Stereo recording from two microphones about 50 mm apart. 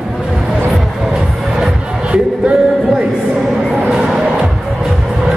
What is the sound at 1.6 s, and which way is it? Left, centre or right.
Music, right.